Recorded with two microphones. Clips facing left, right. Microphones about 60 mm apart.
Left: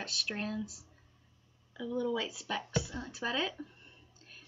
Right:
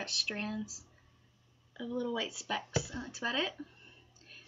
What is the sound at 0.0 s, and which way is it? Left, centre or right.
A woman's voice, centre.